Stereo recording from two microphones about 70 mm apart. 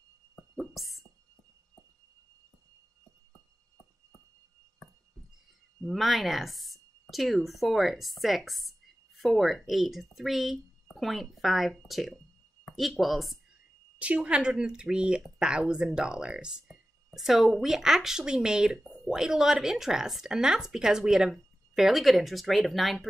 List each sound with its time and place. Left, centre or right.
0.6 s music: centre
5.9 s a woman's voice: centre
13.9 s a woman's voice: centre